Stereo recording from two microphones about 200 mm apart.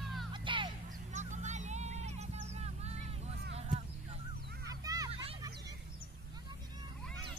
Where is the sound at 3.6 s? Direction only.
35° right (ahead or behind).